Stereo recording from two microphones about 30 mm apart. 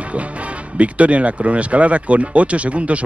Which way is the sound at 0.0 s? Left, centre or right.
Right.